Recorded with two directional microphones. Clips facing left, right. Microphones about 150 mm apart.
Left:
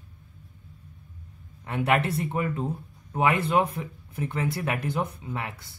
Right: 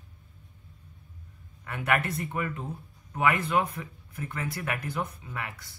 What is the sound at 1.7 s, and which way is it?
Speech, 25° left (ahead or behind).